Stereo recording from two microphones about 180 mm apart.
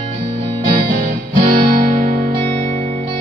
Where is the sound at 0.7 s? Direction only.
55° right (ahead or behind).